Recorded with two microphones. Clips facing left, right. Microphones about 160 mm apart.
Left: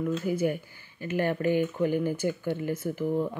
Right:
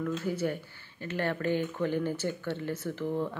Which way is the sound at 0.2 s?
10° left (ahead or behind).